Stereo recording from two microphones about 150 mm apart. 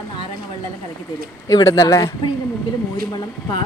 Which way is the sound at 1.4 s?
25° left (ahead or behind).